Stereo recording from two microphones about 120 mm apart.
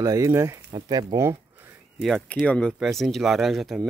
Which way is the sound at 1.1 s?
20° right (ahead or behind).